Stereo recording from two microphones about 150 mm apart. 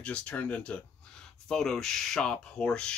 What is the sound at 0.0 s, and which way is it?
Speech, 5° left (ahead or behind).